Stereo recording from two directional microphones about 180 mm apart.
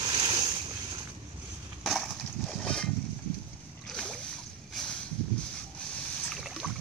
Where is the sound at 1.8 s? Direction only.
Centre (ahead or behind).